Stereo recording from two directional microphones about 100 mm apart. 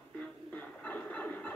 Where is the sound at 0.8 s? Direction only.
15° left (ahead or behind).